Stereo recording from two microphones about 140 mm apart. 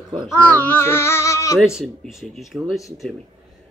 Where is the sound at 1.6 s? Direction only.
5° right (ahead or behind).